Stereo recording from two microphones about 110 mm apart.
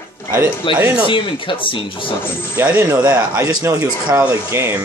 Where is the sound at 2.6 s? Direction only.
20° right (ahead or behind).